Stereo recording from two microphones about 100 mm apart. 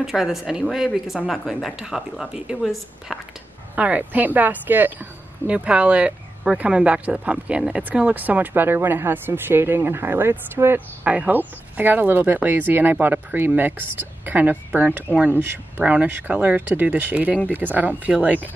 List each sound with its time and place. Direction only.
0.0 s speech: 5° right (ahead or behind)
3.7 s speech: 15° right (ahead or behind)